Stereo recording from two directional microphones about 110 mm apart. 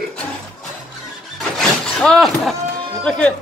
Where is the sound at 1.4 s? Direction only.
5° left (ahead or behind).